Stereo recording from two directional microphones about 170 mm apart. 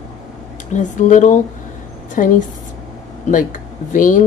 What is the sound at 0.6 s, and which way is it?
A woman's voice, 45° left (ahead or behind).